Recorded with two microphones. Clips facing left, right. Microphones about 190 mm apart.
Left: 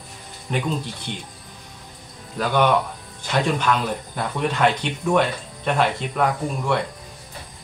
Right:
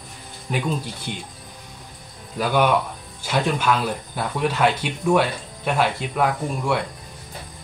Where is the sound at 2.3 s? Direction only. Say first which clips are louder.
Even; 5° right (ahead or behind).